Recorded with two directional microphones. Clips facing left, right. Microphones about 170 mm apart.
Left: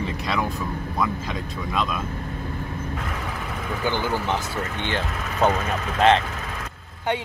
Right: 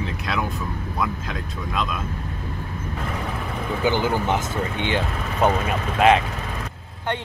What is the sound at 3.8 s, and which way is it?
Speech, 15° right (ahead or behind).